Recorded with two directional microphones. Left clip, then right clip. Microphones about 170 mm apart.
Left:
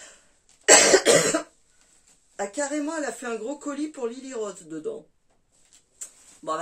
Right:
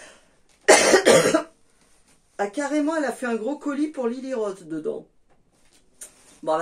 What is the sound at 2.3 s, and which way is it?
Speech, 15° right (ahead or behind).